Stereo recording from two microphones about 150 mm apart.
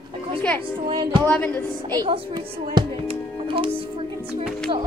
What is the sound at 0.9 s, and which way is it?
Music, 30° right (ahead or behind).